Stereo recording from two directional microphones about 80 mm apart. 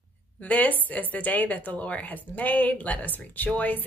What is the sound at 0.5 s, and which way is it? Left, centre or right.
A woman's voice, left.